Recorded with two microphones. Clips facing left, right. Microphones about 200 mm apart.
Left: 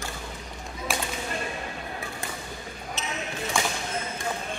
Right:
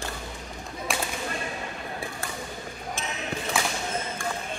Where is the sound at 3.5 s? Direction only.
5° right (ahead or behind).